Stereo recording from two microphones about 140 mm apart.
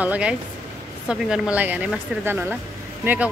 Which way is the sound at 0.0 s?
10° right (ahead or behind).